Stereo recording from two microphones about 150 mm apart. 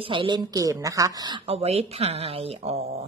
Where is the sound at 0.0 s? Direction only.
35° right (ahead or behind).